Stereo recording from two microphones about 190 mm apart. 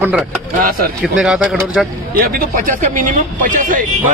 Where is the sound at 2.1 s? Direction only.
50° right (ahead or behind).